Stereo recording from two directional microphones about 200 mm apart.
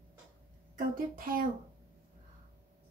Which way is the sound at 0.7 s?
45° right (ahead or behind).